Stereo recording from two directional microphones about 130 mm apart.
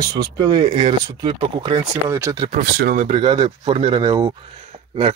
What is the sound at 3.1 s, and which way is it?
Speech, 40° right (ahead or behind).